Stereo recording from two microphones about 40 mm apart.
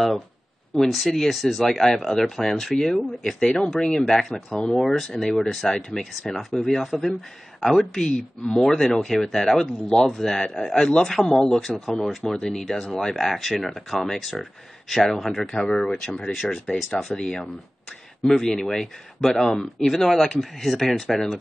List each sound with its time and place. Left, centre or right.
0.7 s speech: centre
4.9 s speech: centre
5.2 s speech: centre
10.7 s speech: left
11.0 s speech: centre
15.6 s speech: centre